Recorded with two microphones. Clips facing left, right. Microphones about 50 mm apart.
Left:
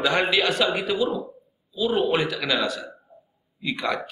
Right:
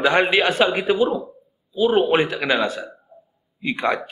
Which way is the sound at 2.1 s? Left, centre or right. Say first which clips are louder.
Right 5 dB; right.